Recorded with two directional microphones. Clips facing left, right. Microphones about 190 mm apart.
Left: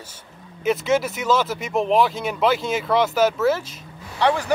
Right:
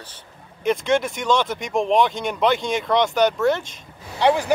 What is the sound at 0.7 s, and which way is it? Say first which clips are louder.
Speech: even; 5° left (ahead or behind).